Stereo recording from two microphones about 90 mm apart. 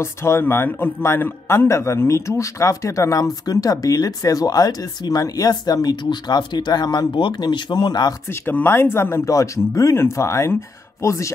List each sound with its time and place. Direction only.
0.0 s a man's voice: 30° left (ahead or behind); by 8.1 s 50° left (ahead or behind)
8.3 s a man's voice: 25° left (ahead or behind)